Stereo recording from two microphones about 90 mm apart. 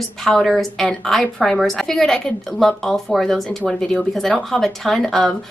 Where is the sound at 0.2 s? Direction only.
5° left (ahead or behind).